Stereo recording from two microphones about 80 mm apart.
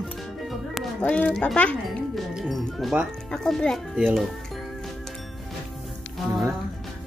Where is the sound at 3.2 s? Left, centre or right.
Centre.